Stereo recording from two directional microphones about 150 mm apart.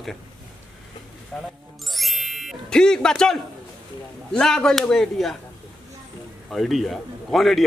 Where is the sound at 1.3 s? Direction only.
5° left (ahead or behind).